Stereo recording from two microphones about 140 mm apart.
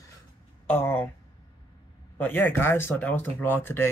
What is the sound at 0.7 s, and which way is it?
Speech, 15° left (ahead or behind).